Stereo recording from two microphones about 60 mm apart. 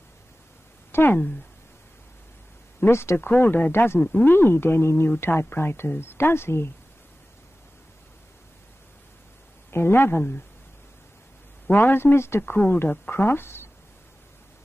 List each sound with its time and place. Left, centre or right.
0.9 s speech: left
2.8 s speech: left
3.2 s speech: left
9.7 s speech: left
11.6 s speech: left